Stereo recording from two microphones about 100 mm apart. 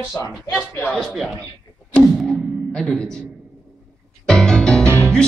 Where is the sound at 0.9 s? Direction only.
Centre (ahead or behind).